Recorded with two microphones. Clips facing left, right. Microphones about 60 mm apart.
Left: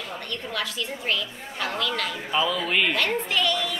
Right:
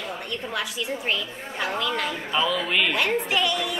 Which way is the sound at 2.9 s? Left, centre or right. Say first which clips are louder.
Right 1 dB; centre.